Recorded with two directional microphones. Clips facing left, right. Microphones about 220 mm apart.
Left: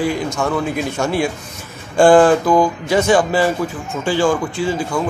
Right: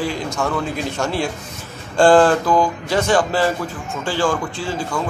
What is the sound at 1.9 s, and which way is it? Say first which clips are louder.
Speech: left 2 dB; 15° left (ahead or behind).